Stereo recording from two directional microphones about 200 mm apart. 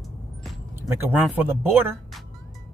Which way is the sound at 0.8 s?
10° right (ahead or behind).